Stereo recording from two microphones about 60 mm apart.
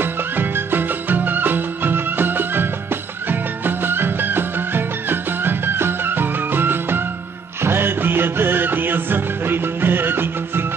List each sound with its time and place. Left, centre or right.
0.0 s music: right